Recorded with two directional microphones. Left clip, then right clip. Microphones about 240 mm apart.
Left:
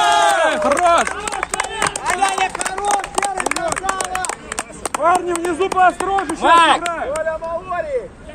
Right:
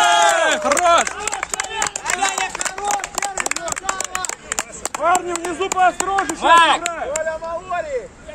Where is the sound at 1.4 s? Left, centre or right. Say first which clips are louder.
Left 5 dB; right.